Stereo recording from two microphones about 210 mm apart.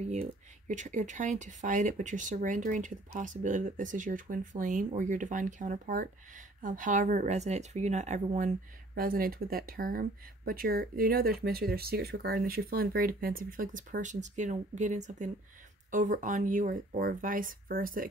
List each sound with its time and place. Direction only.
0.1 s speech: 35° right (ahead or behind)